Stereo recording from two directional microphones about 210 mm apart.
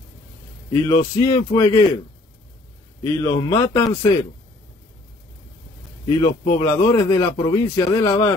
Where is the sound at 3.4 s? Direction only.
15° left (ahead or behind).